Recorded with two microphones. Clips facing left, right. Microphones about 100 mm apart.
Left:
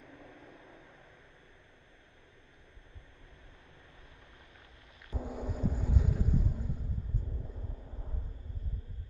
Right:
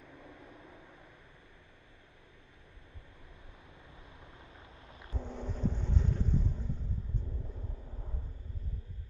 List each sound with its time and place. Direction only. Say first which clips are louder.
0.0 s vehicle: even; 10° right (ahead or behind)
5.1 s boat: left 3 dB; 10° left (ahead or behind)